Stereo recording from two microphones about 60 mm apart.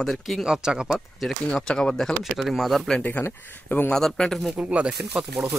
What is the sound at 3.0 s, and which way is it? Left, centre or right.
Speech, left.